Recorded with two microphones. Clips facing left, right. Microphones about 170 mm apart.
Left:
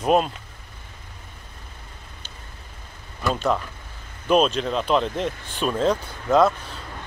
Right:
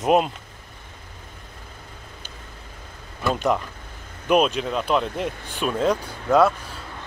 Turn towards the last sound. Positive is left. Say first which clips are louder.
# even
turn(degrees=-10)  # may be behind; listen again after turning